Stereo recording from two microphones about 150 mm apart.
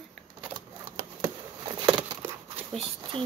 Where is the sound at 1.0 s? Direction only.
25° right (ahead or behind).